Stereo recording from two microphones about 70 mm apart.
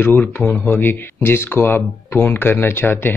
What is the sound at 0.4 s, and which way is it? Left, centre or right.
Speech, centre.